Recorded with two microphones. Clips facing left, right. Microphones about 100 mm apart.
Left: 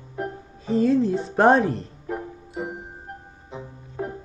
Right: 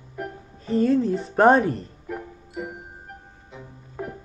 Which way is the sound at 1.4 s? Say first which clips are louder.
Right 1 dB; centre (ahead or behind).